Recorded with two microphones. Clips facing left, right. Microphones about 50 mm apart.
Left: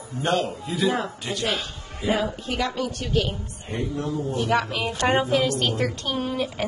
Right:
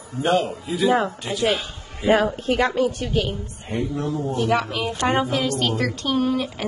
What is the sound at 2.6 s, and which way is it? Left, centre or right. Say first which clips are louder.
Speech: right 5 dB; right.